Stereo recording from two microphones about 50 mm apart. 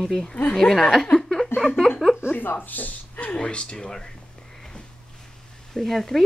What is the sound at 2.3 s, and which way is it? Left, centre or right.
Speech, left.